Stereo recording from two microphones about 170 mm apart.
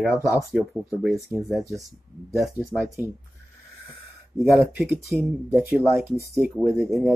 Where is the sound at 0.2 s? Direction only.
20° left (ahead or behind).